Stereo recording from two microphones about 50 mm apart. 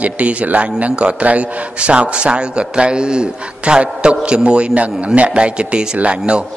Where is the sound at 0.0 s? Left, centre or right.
Right.